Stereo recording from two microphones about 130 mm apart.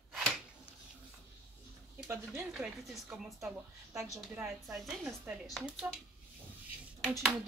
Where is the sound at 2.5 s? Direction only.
5° right (ahead or behind).